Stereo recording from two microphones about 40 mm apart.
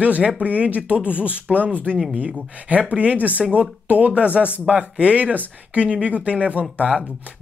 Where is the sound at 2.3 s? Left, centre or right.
Right.